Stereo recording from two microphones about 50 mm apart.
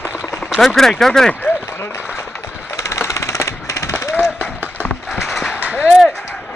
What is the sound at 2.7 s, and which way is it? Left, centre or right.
Machine gun, left.